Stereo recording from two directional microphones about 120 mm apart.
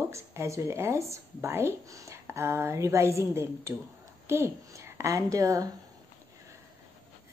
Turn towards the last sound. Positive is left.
turn(degrees=-30)  # may be behind; listen again after turning